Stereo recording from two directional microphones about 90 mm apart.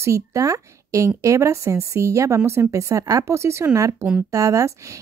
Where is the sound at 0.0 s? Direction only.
35° right (ahead or behind).